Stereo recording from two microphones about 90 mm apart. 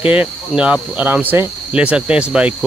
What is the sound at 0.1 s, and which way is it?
Cricket, 15° right (ahead or behind).